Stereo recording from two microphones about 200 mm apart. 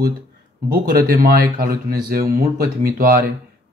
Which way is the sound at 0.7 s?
50° right (ahead or behind).